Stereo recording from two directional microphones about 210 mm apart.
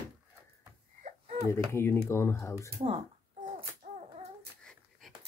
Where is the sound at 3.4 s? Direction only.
35° right (ahead or behind).